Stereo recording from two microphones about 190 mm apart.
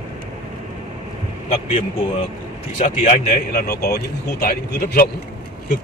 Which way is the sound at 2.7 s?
35° left (ahead or behind).